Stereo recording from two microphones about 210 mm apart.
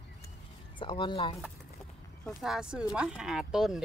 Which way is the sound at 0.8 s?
20° left (ahead or behind).